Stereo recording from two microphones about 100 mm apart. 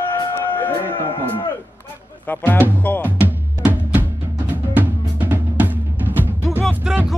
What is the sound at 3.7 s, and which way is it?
Music, 15° right (ahead or behind).